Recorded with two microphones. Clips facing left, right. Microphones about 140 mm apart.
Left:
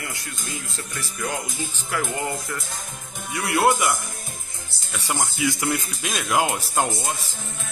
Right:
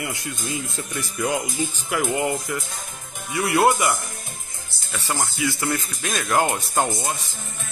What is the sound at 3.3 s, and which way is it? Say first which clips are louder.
Speech: right 2 dB; centre (ahead or behind).